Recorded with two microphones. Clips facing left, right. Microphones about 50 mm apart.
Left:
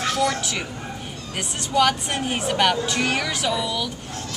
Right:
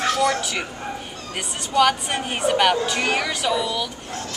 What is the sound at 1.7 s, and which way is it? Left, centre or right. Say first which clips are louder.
Speech: right 1 dB; centre.